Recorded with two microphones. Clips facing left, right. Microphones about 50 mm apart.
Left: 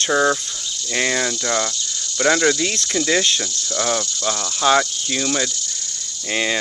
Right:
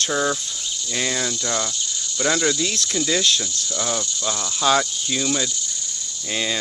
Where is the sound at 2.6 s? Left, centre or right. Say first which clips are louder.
Left 2 dB; left.